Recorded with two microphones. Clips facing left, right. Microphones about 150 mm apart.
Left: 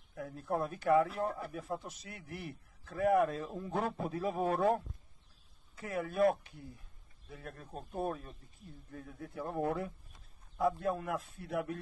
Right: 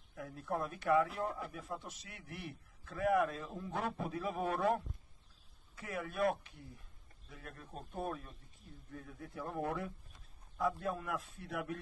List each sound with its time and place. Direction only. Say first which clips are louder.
0.1 s a man's voice: left 3 dB; 30° left (ahead or behind)
1.1 s speech: left 3 dB; 15° left (ahead or behind)
1.5 s a man's voice: left 5 dB; 35° left (ahead or behind)
5.8 s a man's voice: left 5 dB; 35° left (ahead or behind)
9.3 s a man's voice: left 4 dB; 40° left (ahead or behind)